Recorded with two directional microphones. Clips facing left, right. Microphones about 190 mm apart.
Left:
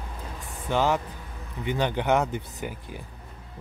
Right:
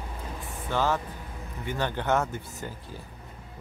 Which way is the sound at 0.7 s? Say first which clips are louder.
Left 3 dB; 15° left (ahead or behind).